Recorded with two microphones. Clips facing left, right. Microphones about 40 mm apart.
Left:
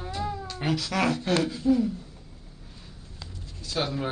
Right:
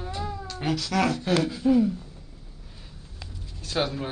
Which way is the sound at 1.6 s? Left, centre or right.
Right.